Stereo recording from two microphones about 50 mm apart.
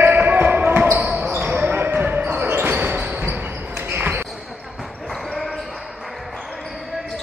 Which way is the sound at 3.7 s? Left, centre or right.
Right.